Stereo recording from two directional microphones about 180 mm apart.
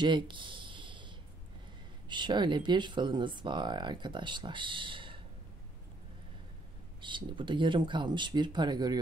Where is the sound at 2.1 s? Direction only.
25° right (ahead or behind).